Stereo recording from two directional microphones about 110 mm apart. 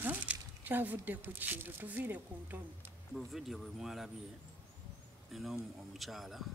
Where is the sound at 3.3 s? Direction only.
5° right (ahead or behind).